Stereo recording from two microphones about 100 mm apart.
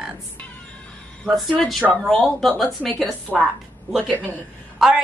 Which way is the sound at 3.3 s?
20° left (ahead or behind).